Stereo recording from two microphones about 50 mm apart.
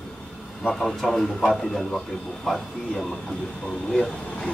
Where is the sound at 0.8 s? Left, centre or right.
Centre.